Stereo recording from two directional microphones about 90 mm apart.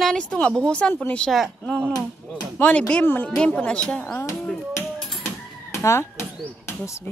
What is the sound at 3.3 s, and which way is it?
Speech, 10° left (ahead or behind).